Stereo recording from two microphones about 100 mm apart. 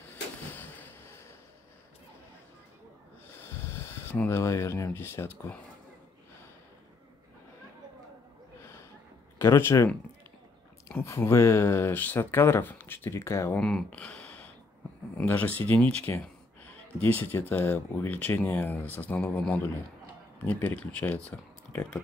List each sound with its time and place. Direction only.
0.1 s a sound: 20° left (ahead or behind)
3.3 s a sound: 25° left (ahead or behind)
4.4 s speech: 30° left (ahead or behind)
9.4 s speech: 25° left (ahead or behind)
11.1 s speech: 25° left (ahead or behind)
13.6 s speech: 10° left (ahead or behind)
17.0 s speech: 20° left (ahead or behind)